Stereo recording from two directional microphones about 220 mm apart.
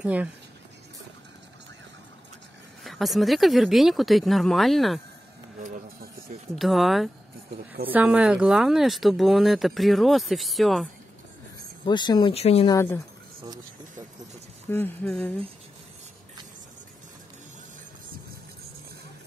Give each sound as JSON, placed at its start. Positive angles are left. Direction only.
{"t": 0.0, "sound": "speech", "side_deg": -5}
{"t": 2.8, "sound": "speech", "side_deg": 0}
{"t": 6.5, "sound": "speech", "side_deg": 0}
{"t": 11.8, "sound": "speech", "side_deg": 20}
{"t": 12.7, "sound": "speech", "side_deg": 10}
{"t": 14.7, "sound": "speech", "side_deg": 5}